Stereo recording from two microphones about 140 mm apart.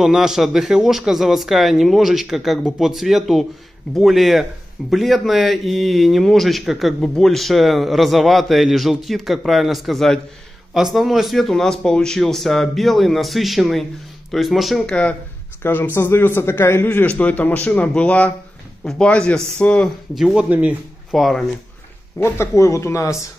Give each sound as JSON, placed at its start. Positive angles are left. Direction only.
{"t": 0.0, "sound": "a man's voice", "side_deg": -5}
{"t": 20.3, "sound": "speech", "side_deg": -10}
{"t": 21.1, "sound": "a man's voice", "side_deg": 0}
{"t": 22.2, "sound": "speech", "side_deg": 20}